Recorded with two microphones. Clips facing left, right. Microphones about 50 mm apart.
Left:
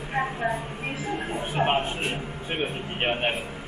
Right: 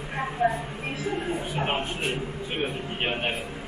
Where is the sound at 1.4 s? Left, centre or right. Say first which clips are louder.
Left 4 dB; left.